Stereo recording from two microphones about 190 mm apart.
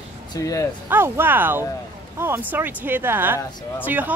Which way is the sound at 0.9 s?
10° right (ahead or behind).